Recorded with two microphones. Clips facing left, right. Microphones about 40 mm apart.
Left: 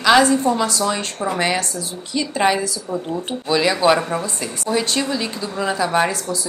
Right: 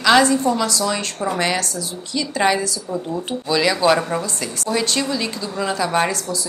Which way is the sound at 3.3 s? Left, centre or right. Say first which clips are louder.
Even; centre.